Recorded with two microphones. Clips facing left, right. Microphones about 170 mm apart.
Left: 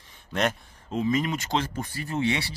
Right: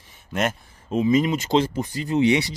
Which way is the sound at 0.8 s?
15° right (ahead or behind).